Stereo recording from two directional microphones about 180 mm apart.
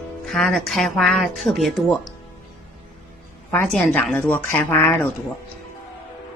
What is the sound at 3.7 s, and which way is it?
Speech, 5° left (ahead or behind).